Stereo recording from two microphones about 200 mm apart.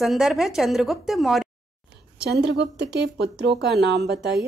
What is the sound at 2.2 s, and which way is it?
Speech, 55° right (ahead or behind).